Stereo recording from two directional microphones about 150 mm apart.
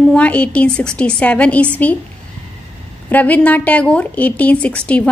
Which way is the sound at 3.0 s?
10° left (ahead or behind).